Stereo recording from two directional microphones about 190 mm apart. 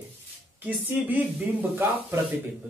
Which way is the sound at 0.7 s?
10° right (ahead or behind).